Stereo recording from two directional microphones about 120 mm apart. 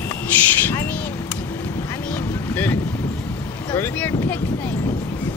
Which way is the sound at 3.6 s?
20° left (ahead or behind).